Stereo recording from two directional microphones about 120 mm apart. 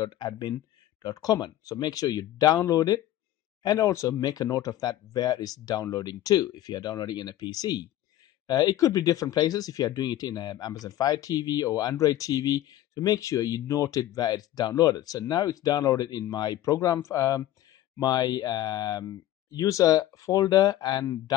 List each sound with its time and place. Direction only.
0.0 s speech: 35° left (ahead or behind)